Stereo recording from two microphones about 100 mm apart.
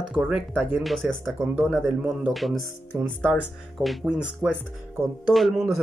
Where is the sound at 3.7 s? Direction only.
Centre (ahead or behind).